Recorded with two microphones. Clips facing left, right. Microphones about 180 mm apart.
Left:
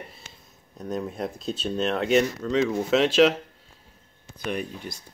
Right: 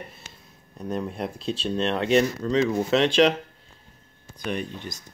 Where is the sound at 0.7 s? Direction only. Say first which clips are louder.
Right 1 dB; centre (ahead or behind).